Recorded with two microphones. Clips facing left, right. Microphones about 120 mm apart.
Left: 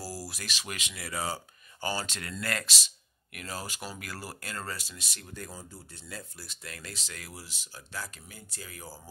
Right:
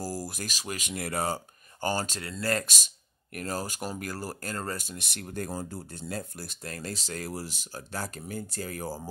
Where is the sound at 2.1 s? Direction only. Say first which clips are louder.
Right 5 dB; 30° right (ahead or behind).